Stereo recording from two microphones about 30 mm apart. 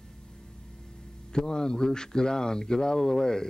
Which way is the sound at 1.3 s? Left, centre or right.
Left.